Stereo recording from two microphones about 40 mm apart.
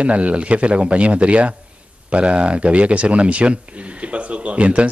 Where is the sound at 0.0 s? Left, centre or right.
Right.